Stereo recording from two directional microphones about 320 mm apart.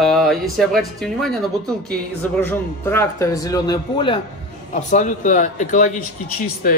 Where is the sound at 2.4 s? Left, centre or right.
Centre.